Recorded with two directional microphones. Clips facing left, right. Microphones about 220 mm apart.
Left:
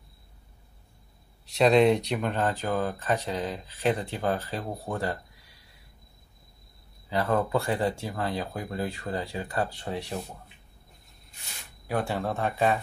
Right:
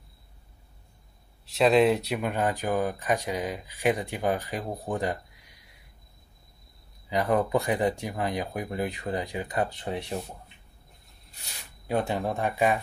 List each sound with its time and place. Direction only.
1.4 s speech: centre (ahead or behind); by 5.6 s 15° right (ahead or behind)
7.1 s speech: 15° right (ahead or behind)
11.9 s speech: 20° right (ahead or behind)